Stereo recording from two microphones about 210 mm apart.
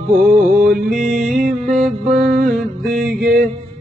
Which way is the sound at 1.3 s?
40° right (ahead or behind).